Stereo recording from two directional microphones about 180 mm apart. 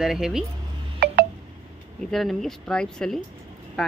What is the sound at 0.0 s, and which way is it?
Speech, 5° right (ahead or behind).